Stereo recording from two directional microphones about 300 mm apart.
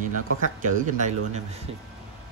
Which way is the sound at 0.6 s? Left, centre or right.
Right.